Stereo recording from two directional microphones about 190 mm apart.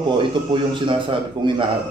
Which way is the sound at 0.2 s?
25° right (ahead or behind).